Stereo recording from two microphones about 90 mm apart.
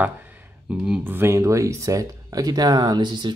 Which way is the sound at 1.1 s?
25° right (ahead or behind).